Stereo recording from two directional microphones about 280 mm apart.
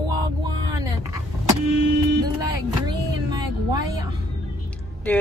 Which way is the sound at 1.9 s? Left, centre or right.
Right.